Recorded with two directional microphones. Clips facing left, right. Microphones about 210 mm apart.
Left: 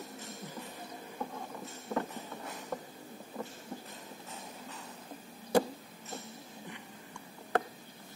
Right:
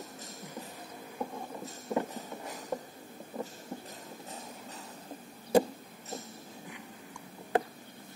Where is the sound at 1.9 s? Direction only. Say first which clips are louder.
Right 3 dB; 15° right (ahead or behind).